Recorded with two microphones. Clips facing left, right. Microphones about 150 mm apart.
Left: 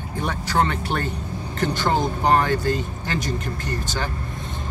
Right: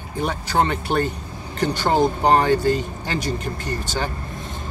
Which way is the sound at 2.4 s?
15° right (ahead or behind).